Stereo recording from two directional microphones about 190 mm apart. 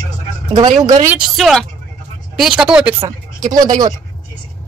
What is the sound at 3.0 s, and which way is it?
Speech, 20° right (ahead or behind).